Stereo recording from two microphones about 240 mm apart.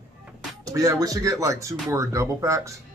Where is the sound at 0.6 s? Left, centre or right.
Centre.